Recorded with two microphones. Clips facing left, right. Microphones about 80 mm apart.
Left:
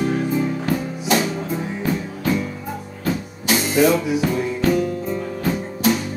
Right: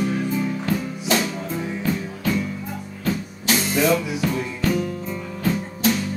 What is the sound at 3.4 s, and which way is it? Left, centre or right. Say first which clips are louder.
Music: left 4 dB; centre.